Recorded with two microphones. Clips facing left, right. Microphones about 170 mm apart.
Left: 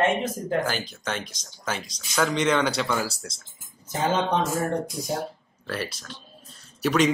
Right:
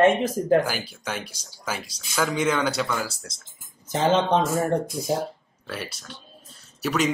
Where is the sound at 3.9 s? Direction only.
25° right (ahead or behind).